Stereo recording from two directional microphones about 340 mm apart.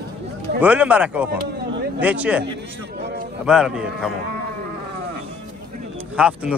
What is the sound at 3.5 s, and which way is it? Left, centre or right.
Speech, centre.